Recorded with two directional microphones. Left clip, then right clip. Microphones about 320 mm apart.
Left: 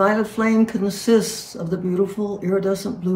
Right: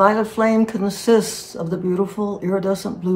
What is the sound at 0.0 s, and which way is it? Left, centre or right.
Speech, centre.